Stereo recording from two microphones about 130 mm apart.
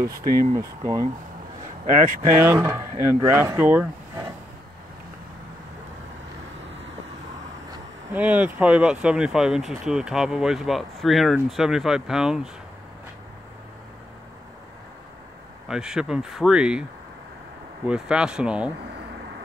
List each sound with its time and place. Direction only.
0.0 s speech: 25° right (ahead or behind)
2.2 s speech: 20° right (ahead or behind)
8.1 s speech: 15° right (ahead or behind)
15.7 s speech: 5° right (ahead or behind)
17.8 s speech: 5° right (ahead or behind)